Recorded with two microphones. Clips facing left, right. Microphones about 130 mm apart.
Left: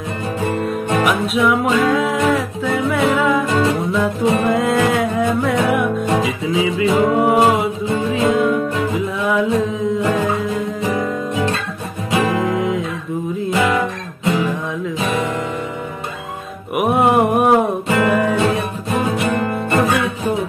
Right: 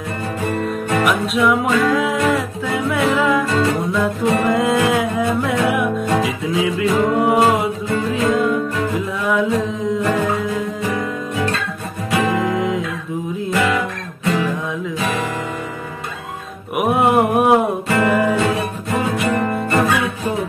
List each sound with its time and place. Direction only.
1.0 s music: centre (ahead or behind)
12.2 s music: centre (ahead or behind)
13.5 s music: 20° left (ahead or behind)
16.7 s a sound: centre (ahead or behind)
17.8 s music: 15° left (ahead or behind)